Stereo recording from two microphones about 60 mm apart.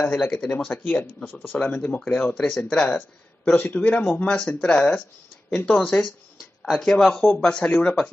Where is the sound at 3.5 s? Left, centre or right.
Left.